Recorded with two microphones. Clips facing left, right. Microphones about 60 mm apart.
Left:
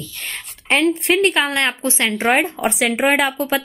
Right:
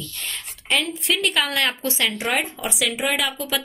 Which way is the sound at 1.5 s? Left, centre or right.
Left.